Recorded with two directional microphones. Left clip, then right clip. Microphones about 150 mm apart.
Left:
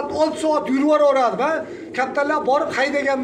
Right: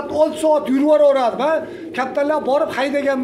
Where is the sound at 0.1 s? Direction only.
25° right (ahead or behind).